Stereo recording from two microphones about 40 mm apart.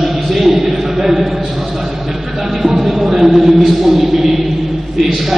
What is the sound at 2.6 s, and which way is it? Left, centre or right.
Speech, centre.